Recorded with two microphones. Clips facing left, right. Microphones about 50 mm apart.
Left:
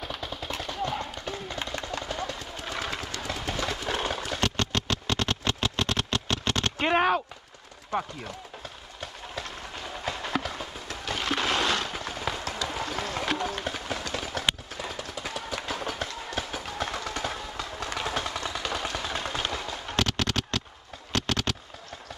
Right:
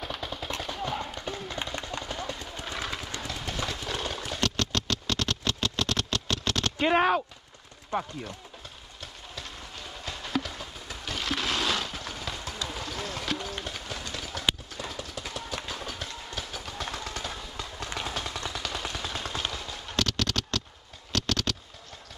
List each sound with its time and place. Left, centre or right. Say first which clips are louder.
0.0 s a sound: even; centre
2.5 s vehicle: left 2 dB; centre
3.3 s clip-clop: left 3 dB; centre
4.5 s vehicle: left 1 dB; centre
10.0 s clip-clop: left 2 dB; centre
11.1 s a sound: left 3 dB; centre
12.6 s vehicle: left 3 dB; left
13.7 s a sound: left 5 dB; left
14.1 s run: left 4 dB; left
15.2 s train: left 4 dB; left
17.8 s vehicle: left 3 dB; left
20.0 s a sound: left 1 dB; centre